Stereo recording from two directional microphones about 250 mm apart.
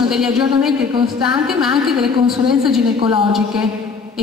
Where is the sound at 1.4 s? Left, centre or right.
Centre.